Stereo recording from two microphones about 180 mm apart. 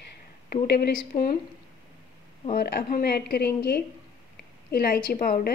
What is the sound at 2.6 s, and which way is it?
A woman's voice, 60° left (ahead or behind).